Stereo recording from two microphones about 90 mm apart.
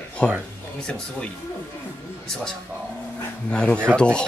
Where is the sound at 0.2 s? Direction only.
10° left (ahead or behind).